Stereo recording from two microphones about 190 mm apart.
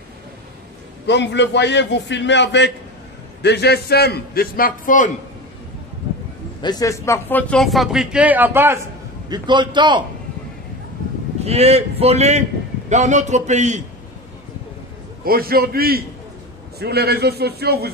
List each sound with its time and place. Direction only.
1.0 s a man's voice: 65° left (ahead or behind); by 5.1 s 45° left (ahead or behind)
6.6 s speech: 20° left (ahead or behind); by 8.8 s 10° right (ahead or behind)
9.3 s a man's voice: 25° right (ahead or behind)
11.4 s a man's voice: 35° right (ahead or behind)
15.2 s a man's voice: 50° right (ahead or behind)